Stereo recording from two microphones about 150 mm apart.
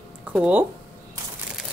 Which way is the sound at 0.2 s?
10° right (ahead or behind).